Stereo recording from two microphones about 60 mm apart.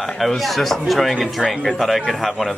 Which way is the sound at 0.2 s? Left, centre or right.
Centre.